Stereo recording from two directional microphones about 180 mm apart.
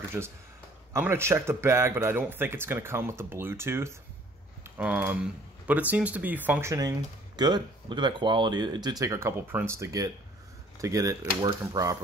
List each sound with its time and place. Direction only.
0.9 s speech: 15° right (ahead or behind)